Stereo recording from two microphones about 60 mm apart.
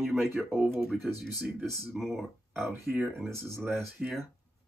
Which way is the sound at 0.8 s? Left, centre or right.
Centre.